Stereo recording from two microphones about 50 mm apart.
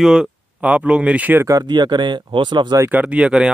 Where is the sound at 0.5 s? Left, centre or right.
Right.